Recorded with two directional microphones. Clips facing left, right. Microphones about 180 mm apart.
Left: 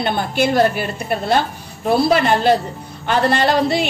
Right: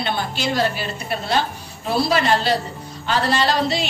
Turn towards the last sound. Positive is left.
turn(degrees=55)  # may be behind; listen again after turning